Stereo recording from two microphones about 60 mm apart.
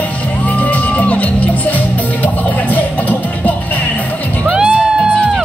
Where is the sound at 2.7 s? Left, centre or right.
Left.